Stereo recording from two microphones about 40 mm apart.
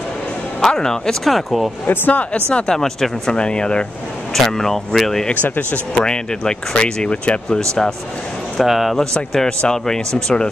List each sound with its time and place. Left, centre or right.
0.6 s speech: centre
1.2 s speech: centre
1.9 s speech: left
2.5 s speech: left
4.3 s speech: centre
5.6 s speech: left
6.0 s speech: centre
8.6 s speech: centre
8.9 s speech: centre